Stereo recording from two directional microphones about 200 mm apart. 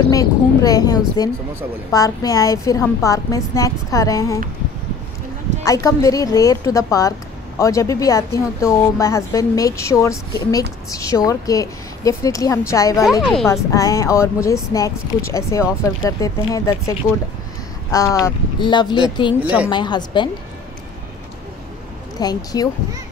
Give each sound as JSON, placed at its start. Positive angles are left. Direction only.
{"t": 0.1, "sound": "a woman's voice", "side_deg": 15}
{"t": 5.7, "sound": "a woman's voice", "side_deg": 15}
{"t": 17.9, "sound": "speech", "side_deg": 15}
{"t": 19.4, "sound": "a woman's voice", "side_deg": -5}
{"t": 19.7, "sound": "speech", "side_deg": 20}
{"t": 22.2, "sound": "speech", "side_deg": 20}